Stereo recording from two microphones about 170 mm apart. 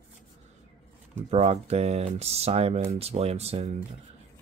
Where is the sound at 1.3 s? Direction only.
40° right (ahead or behind).